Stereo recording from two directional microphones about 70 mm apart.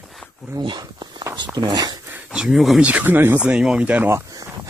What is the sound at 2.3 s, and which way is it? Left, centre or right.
Speech, centre.